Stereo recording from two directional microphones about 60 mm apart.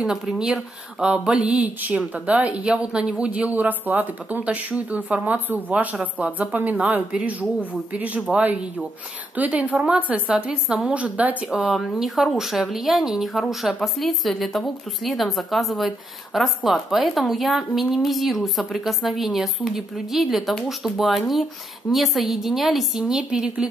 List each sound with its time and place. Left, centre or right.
0.0 s a woman's voice: centre; by 11.5 s right
11.5 s a woman's voice: centre